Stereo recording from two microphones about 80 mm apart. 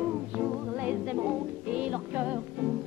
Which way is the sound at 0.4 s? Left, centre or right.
Centre.